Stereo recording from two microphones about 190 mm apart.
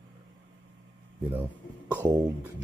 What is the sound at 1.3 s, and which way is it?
Speech, 10° right (ahead or behind).